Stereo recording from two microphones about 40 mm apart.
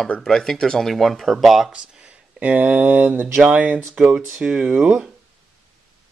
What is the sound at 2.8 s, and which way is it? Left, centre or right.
Mantra, right.